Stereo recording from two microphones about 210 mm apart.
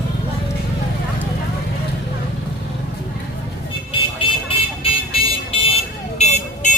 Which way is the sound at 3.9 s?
25° left (ahead or behind).